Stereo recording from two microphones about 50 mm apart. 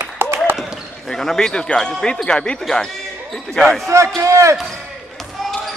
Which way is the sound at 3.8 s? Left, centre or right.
Right.